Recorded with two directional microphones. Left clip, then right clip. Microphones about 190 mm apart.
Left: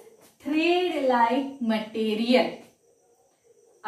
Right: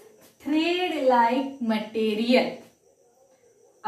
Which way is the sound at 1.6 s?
5° left (ahead or behind).